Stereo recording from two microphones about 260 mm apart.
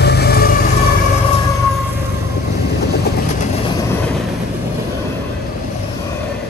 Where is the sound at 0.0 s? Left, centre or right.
Left.